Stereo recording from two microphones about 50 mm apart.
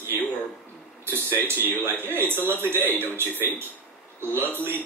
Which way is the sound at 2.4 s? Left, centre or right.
Right.